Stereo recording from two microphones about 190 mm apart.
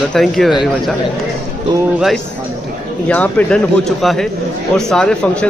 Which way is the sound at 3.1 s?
5° left (ahead or behind).